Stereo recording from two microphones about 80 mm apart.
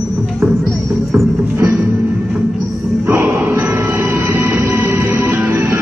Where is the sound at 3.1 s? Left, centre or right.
Right.